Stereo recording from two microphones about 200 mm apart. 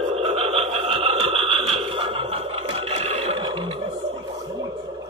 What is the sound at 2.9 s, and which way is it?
Neigh, 30° right (ahead or behind).